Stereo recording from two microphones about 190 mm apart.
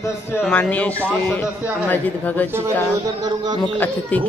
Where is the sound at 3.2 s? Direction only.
20° right (ahead or behind).